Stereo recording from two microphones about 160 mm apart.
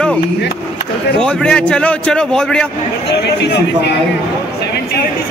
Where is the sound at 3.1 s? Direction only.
90° left.